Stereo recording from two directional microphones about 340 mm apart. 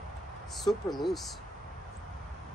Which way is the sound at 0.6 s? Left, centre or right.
Centre.